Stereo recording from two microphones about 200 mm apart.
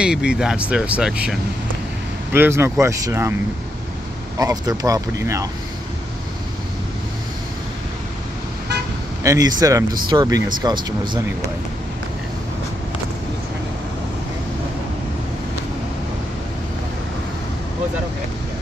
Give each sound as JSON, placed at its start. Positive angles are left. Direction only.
{"t": 0.0, "sound": "speech", "side_deg": -5}
{"t": 4.4, "sound": "speech", "side_deg": -15}
{"t": 9.2, "sound": "speech", "side_deg": -15}